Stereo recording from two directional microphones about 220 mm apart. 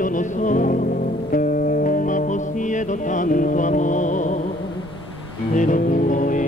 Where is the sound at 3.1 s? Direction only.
35° left (ahead or behind).